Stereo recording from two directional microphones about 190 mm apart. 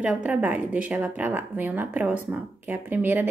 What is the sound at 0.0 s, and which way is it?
Speech, 5° right (ahead or behind).